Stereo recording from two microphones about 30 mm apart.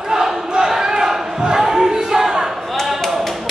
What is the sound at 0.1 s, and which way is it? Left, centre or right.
Battle cry, centre.